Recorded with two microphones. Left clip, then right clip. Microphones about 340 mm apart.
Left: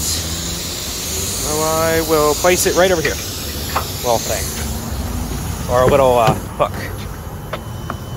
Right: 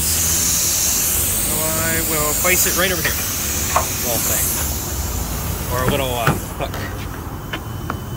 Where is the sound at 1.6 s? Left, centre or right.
Centre.